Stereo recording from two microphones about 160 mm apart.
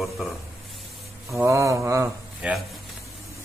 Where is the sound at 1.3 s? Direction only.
20° right (ahead or behind).